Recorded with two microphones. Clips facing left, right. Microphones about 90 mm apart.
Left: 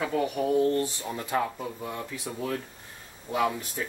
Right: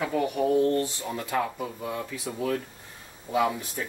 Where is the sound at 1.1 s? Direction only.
15° left (ahead or behind).